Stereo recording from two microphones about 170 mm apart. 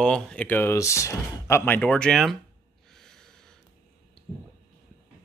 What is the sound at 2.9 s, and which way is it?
Snort, 5° left (ahead or behind).